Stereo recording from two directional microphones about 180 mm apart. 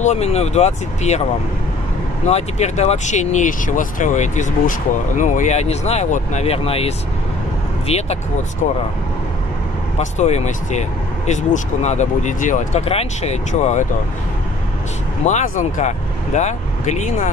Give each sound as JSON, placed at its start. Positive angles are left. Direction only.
{"t": 0.0, "sound": "speech", "side_deg": 35}
{"t": 2.2, "sound": "speech", "side_deg": 40}
{"t": 9.9, "sound": "speech", "side_deg": 40}
{"t": 15.2, "sound": "speech", "side_deg": 45}